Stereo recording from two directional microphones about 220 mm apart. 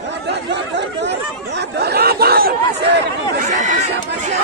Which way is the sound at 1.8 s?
45° right (ahead or behind).